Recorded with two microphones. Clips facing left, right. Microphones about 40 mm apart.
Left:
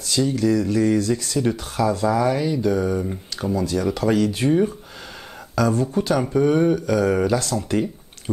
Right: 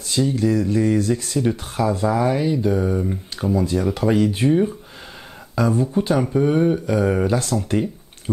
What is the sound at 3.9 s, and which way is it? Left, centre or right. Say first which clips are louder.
Speech: left 1 dB; centre.